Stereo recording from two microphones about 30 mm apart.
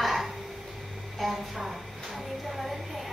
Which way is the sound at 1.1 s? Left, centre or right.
Centre.